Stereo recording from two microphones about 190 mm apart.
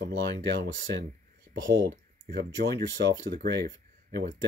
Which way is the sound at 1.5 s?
20° right (ahead or behind).